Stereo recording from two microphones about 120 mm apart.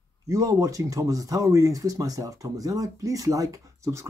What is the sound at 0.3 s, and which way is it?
Speech, 25° right (ahead or behind).